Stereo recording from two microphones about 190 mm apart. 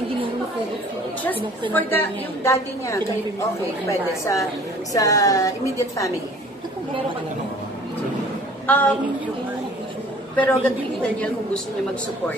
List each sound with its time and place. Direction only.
1.7 s a woman's voice: 10° left (ahead or behind)
4.2 s a woman's voice: 15° left (ahead or behind)
8.6 s a woman's voice: 10° left (ahead or behind)
10.3 s a woman's voice: 5° left (ahead or behind)